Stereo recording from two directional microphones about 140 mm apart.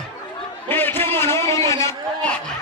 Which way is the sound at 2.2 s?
10° left (ahead or behind).